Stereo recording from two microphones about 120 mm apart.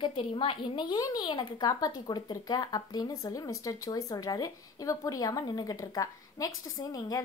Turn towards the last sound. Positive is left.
turn(degrees=35)  # may be behind; listen again after turning